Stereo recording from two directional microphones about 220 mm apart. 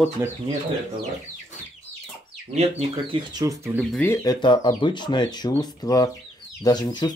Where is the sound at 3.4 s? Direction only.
10° right (ahead or behind).